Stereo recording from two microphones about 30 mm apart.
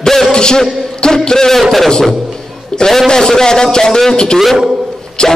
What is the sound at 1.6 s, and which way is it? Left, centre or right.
Speech, centre.